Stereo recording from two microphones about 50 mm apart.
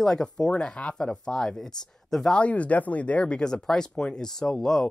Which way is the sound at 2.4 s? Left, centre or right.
Left.